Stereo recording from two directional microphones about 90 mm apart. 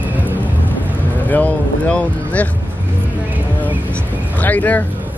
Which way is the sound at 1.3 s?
15° left (ahead or behind).